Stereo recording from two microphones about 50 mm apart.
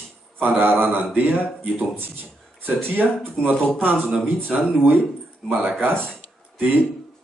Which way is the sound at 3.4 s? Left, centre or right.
Centre.